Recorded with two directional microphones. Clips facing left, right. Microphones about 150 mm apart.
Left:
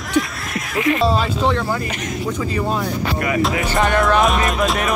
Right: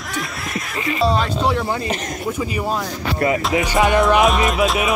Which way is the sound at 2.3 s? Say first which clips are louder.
Even; 10° right (ahead or behind).